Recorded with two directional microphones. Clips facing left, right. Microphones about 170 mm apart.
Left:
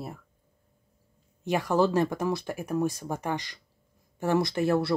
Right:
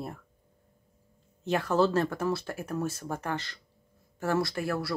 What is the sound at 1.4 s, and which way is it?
Speech, 15° left (ahead or behind).